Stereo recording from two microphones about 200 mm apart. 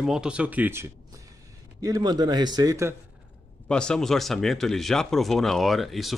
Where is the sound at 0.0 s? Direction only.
5° right (ahead or behind).